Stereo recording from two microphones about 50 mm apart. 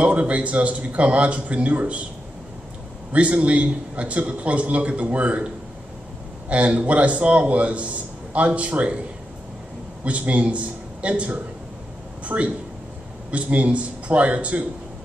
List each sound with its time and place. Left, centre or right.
0.0 s a man's voice: right
3.1 s a man's voice: right
6.5 s a man's voice: right
10.0 s a man's voice: right
12.3 s speech: right
13.3 s a man's voice: right